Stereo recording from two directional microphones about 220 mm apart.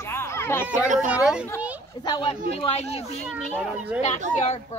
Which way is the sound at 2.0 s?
20° left (ahead or behind).